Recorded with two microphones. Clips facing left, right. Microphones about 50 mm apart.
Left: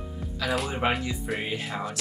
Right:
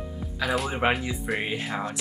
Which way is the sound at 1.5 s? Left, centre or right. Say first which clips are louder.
Right 2 dB; centre.